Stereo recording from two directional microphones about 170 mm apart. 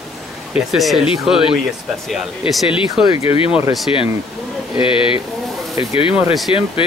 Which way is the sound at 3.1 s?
35° left (ahead or behind).